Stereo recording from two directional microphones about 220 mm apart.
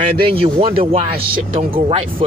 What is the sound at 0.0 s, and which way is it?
Speech, 25° right (ahead or behind).